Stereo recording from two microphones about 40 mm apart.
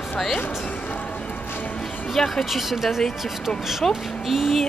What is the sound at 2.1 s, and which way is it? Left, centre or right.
Speech, centre.